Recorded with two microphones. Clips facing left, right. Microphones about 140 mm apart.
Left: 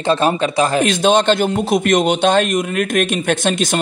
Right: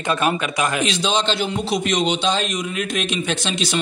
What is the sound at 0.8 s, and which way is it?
A man's voice, 50° left (ahead or behind).